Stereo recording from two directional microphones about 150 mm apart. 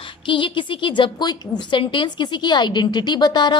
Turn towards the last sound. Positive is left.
turn(degrees=30)  # may be behind; listen again after turning